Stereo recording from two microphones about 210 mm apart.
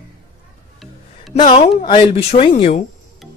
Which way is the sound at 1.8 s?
25° left (ahead or behind).